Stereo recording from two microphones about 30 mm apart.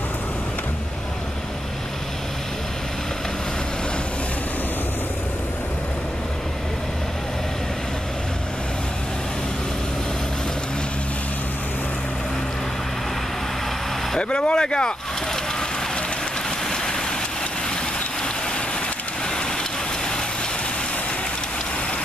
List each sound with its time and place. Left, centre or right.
14.3 s speech: left
16.4 s vehicle: centre